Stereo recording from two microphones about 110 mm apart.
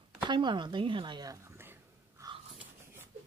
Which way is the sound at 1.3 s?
20° right (ahead or behind).